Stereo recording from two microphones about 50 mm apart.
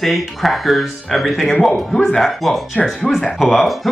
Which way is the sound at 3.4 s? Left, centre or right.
Centre.